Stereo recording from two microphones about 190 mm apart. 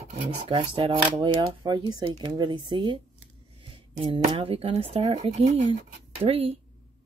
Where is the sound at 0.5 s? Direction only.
25° right (ahead or behind).